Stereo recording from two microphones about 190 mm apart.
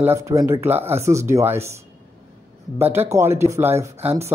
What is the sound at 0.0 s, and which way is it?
Speech, 15° right (ahead or behind).